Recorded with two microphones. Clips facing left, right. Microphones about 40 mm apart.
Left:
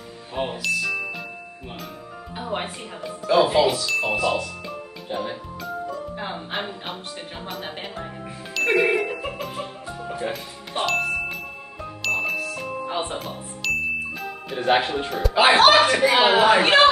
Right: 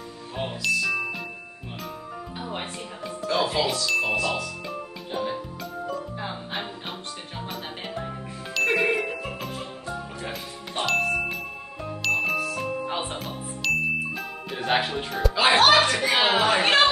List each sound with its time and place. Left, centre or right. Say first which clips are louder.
0.6 s speech: right 3 dB; centre
2.3 s music: left 6 dB; centre
3.3 s speech: left 7 dB; centre
6.5 s music: left 3 dB; centre
8.5 s music: left 3 dB; centre
10.3 s speech: left 2 dB; centre
12.0 s music: even; centre
15.3 s speech: left 3 dB; centre